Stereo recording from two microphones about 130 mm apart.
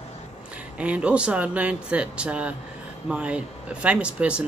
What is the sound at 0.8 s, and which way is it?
Speech, 10° right (ahead or behind).